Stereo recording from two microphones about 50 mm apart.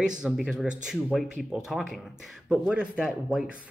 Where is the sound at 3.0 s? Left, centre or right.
Centre.